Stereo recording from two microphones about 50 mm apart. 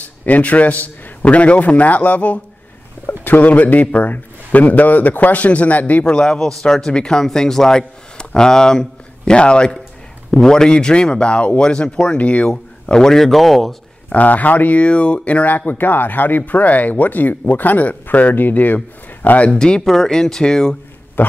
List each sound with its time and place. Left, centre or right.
0.0 s a man's voice: left; by 12.2 s centre
12.2 s a man's voice: left
12.4 s speech: centre
14.0 s speech: left
14.8 s a man's voice: left
15.5 s a man's voice: left
19.5 s speech: centre
21.2 s dog: left